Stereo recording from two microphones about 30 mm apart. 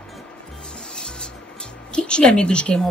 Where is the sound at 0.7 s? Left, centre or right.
Left.